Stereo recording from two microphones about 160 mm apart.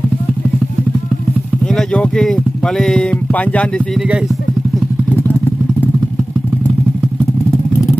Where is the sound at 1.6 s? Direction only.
5° left (ahead or behind).